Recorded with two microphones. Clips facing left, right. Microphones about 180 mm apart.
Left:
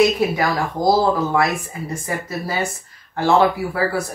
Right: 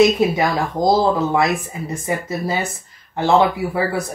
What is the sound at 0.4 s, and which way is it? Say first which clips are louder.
Speech: right 2 dB; 20° right (ahead or behind).